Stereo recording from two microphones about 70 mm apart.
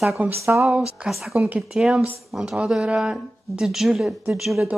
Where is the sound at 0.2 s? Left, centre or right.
Right.